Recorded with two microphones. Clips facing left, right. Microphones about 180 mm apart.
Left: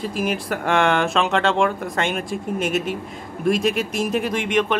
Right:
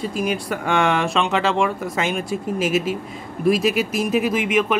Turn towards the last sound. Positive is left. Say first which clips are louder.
# right 1 dB
turn(degrees=-5)  # may be behind; listen again after turning